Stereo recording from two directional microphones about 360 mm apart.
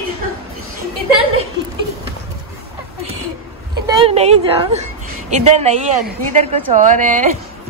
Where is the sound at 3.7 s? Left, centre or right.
Centre.